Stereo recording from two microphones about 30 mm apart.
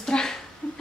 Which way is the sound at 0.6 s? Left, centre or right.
Left.